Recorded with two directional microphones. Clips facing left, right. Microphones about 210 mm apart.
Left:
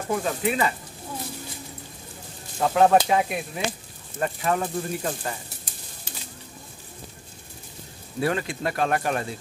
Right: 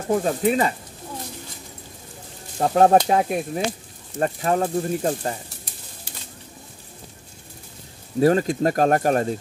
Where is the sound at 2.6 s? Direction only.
40° right (ahead or behind).